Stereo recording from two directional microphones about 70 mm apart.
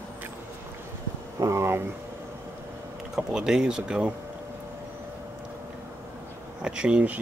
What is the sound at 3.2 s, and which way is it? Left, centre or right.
Speech, centre.